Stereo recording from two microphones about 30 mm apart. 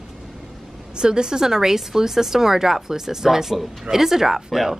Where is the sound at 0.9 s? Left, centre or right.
Right; by 4.7 s centre.